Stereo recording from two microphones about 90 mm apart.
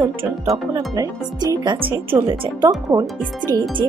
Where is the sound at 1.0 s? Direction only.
50° right (ahead or behind).